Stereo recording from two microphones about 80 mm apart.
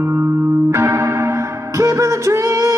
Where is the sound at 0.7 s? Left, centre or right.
Right.